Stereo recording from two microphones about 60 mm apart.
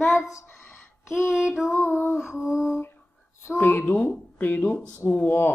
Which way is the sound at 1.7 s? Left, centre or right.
Left.